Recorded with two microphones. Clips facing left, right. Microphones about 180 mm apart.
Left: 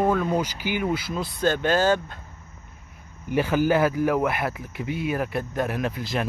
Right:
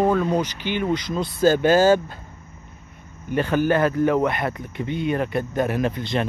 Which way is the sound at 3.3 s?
10° left (ahead or behind).